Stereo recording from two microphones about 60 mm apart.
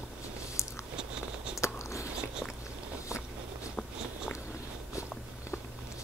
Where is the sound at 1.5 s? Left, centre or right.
Left.